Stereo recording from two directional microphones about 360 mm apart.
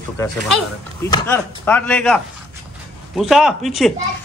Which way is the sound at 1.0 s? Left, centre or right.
Centre.